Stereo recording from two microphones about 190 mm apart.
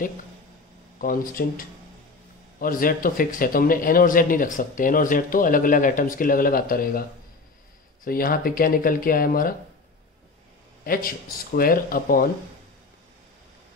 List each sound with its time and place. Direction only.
1.0 s speech: 45° left (ahead or behind)
2.6 s speech: 50° left (ahead or behind)
10.8 s speech: 50° left (ahead or behind)